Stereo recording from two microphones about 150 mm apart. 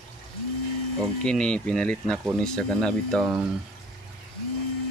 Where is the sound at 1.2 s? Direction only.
5° left (ahead or behind).